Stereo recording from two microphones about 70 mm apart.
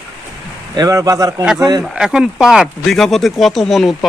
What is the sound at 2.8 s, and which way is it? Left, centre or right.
Speech, centre.